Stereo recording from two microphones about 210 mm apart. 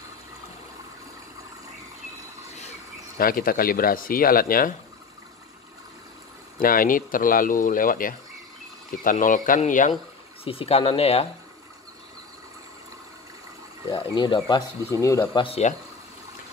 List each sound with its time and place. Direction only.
3.2 s speech: 45° left (ahead or behind)
6.6 s speech: 40° left (ahead or behind)
10.4 s speech: 25° left (ahead or behind)
13.8 s speech: 20° left (ahead or behind)
15.4 s speech: 30° left (ahead or behind)